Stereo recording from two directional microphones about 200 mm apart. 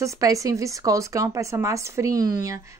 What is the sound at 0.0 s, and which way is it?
Speech, 15° right (ahead or behind).